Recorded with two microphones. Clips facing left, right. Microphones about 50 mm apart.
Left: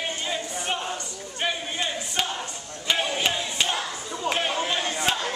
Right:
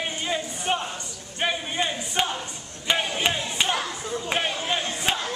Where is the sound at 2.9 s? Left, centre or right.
Centre.